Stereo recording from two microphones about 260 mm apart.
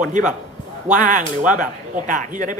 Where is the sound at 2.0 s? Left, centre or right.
Right.